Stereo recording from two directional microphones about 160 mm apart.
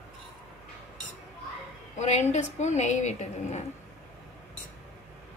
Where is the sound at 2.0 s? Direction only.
45° left (ahead or behind).